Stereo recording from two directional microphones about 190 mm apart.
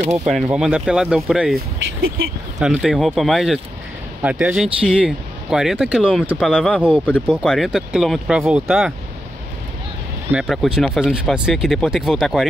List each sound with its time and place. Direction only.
0.2 s speech: centre (ahead or behind)
2.0 s speech: 50° right (ahead or behind)
2.6 s speech: 5° right (ahead or behind)
10.4 s speech: centre (ahead or behind)